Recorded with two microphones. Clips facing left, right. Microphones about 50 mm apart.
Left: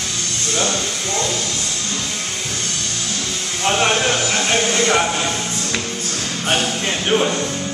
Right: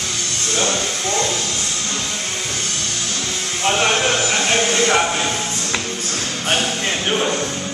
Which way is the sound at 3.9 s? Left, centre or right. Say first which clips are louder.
Even; centre.